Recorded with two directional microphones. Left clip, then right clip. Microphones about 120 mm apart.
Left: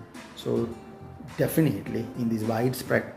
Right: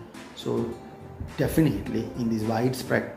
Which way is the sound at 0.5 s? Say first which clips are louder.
Left 1 dB; 40° left (ahead or behind).